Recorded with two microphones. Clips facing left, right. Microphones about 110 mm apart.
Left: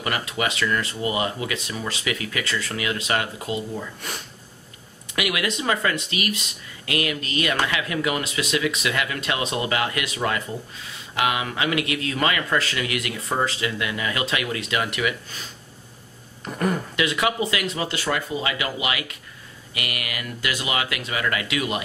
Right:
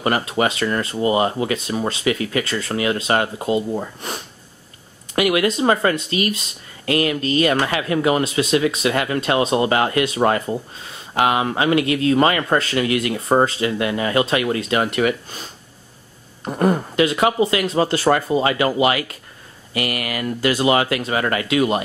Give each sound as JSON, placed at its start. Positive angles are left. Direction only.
{"t": 0.0, "sound": "speech", "side_deg": -35}
{"t": 16.4, "sound": "speech", "side_deg": -35}